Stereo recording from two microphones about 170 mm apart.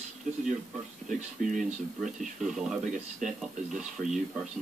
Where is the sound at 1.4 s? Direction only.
55° right (ahead or behind).